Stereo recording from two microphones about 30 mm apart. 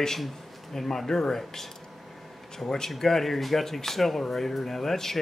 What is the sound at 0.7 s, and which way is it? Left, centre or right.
Speech, centre.